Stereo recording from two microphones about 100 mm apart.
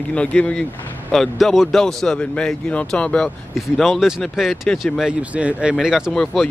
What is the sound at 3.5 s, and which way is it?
Speech, centre (ahead or behind).